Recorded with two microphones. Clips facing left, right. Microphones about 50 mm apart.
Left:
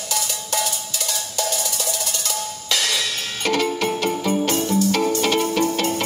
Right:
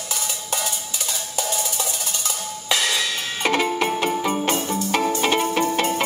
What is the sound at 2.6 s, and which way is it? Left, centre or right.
Music, centre.